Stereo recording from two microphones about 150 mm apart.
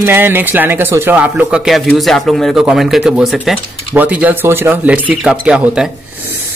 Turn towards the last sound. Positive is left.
turn(degrees=-5)  # may be behind; listen again after turning